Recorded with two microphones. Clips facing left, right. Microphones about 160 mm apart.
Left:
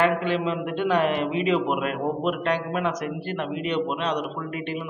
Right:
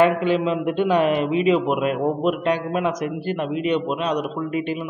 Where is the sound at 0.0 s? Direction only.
20° right (ahead or behind).